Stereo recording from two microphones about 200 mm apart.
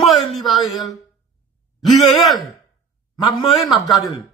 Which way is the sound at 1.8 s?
Centre (ahead or behind).